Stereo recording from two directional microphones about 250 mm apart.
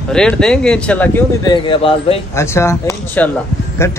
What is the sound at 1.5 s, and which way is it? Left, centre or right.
Speech, centre.